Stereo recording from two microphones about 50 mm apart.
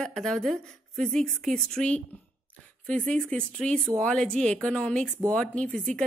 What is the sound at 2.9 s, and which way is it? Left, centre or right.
Speech, left.